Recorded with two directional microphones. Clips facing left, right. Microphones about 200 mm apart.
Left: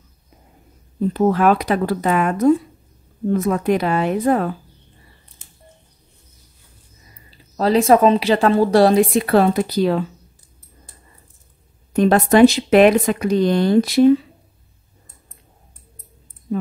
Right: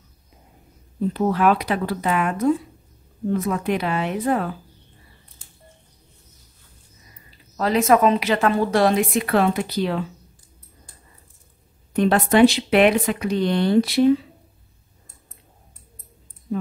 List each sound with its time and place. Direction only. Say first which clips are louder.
1.1 s speech: left 4 dB; 45° left (ahead or behind)
7.2 s speech: left 5 dB; 30° left (ahead or behind)
11.9 s speech: left 4 dB; 40° left (ahead or behind)